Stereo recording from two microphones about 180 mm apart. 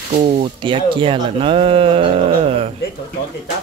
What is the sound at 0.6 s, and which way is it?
Speech, 25° right (ahead or behind).